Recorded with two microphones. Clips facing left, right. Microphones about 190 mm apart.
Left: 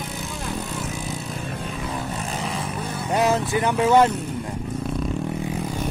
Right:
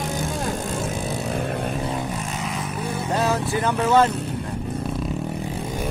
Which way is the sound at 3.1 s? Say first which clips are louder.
Left 3 dB; 15° left (ahead or behind).